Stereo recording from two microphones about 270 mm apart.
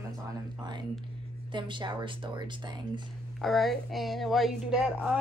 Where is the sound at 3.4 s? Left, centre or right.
Centre.